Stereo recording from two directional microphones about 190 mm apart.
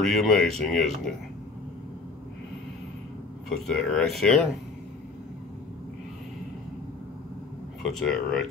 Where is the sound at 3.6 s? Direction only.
5° left (ahead or behind).